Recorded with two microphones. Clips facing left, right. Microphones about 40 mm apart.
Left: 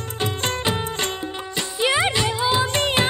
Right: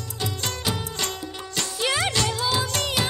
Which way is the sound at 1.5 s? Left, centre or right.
Left.